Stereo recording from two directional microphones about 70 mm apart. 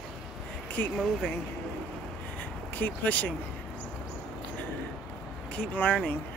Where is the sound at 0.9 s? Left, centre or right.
Centre.